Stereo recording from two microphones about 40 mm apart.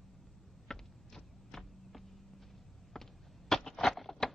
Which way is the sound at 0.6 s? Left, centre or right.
Centre.